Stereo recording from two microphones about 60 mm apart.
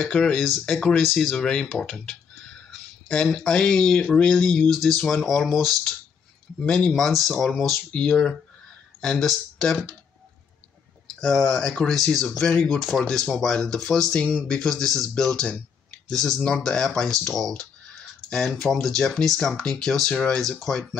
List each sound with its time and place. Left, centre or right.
0.0 s speech: centre
0.9 s speech: centre
1.3 s speech: centre
4.6 s speech: centre
6.6 s speech: centre
7.0 s speech: centre
7.9 s speech: centre
11.1 s speech: centre
12.7 s speech: centre